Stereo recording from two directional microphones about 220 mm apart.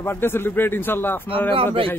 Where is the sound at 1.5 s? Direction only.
25° right (ahead or behind).